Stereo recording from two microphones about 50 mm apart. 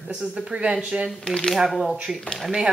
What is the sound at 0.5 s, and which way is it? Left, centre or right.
Speech, right.